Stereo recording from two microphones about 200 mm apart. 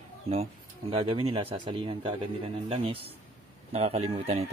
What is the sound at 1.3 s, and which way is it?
Speech, 25° right (ahead or behind).